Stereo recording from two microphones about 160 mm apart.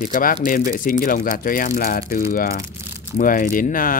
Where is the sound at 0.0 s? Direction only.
55° left (ahead or behind).